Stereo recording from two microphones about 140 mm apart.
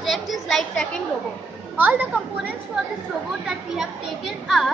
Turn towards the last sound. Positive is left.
turn(degrees=0)  # may be behind; listen again after turning